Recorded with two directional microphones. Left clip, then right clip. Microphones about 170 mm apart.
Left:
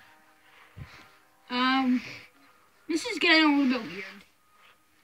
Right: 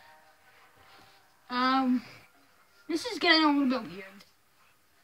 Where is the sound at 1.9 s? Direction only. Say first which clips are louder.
Left 2 dB; 15° left (ahead or behind).